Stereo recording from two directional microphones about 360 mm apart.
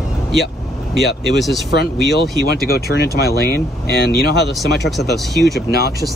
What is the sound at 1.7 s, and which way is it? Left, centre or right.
Speech, left.